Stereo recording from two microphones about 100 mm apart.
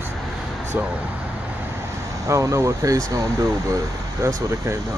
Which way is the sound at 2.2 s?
30° right (ahead or behind).